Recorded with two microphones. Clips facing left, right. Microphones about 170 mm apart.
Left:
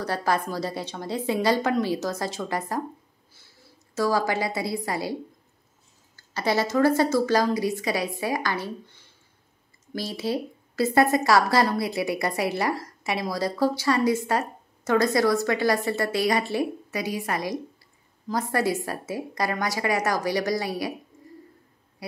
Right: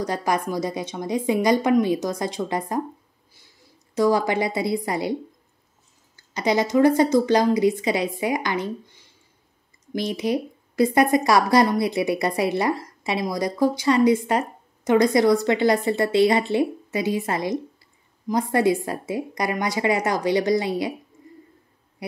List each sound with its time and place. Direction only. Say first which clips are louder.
0.0 s a woman's voice: right 2 dB; 15° right (ahead or behind)
6.1 s a woman's voice: right 3 dB; 15° right (ahead or behind)